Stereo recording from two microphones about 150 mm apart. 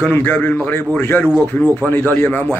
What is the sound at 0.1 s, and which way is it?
Speech, 15° left (ahead or behind).